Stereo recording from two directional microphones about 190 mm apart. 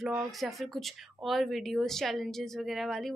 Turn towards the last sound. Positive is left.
turn(degrees=0)  # may be behind; listen again after turning